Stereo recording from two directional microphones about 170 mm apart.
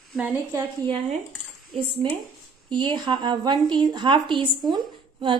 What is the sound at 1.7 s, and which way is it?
A woman's voice, 35° right (ahead or behind).